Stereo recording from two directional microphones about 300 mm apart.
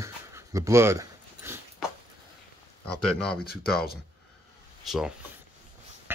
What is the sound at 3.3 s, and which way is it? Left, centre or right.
Speech, left.